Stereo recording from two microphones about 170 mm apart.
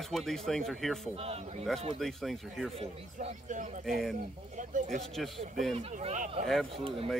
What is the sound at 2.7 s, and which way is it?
Speech, 40° right (ahead or behind).